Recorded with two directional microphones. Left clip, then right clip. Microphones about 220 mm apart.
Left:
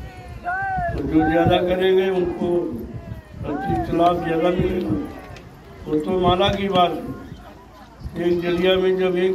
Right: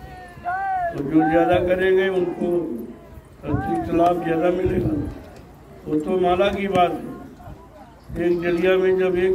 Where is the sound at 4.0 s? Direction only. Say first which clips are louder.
Left 1 dB; centre (ahead or behind).